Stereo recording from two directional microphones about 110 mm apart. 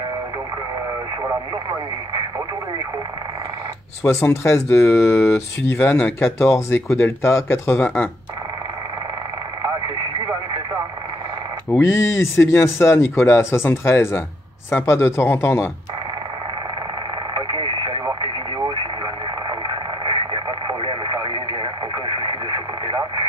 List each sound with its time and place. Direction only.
4.0 s speech: 25° left (ahead or behind)
6.4 s speech: 25° left (ahead or behind)
7.8 s speech: 15° left (ahead or behind)
11.8 s speech: 25° left (ahead or behind)
17.4 s radio: 50° right (ahead or behind)
20.1 s radio: 45° right (ahead or behind)